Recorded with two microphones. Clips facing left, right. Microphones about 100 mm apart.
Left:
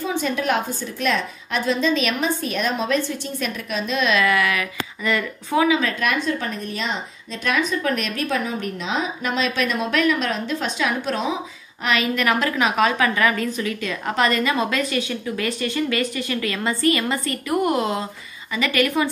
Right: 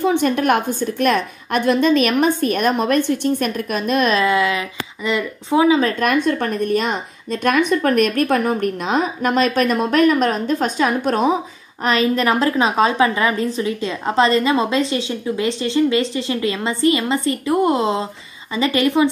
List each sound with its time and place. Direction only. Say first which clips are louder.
0.0 s a woman's voice: right 7 dB; 60° right (ahead or behind)
4.1 s a woman's voice: right 3 dB; 25° right (ahead or behind)
5.8 s speech: right 5 dB; 40° right (ahead or behind)
11.8 s a woman's voice: right 4 dB; 35° right (ahead or behind)